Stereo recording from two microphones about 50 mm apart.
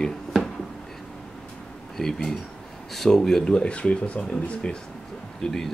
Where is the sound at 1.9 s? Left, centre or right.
Centre.